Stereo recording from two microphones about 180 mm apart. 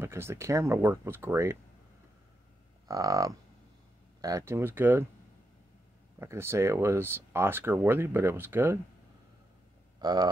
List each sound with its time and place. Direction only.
0.0 s speech: 15° right (ahead or behind)
2.9 s livestock: 20° right (ahead or behind)
4.2 s speech: 20° right (ahead or behind)
6.1 s speech: 15° right (ahead or behind)
9.9 s speech: 20° right (ahead or behind)